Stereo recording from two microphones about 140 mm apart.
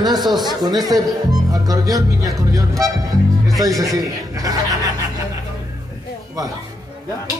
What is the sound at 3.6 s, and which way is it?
A man's voice, 25° right (ahead or behind).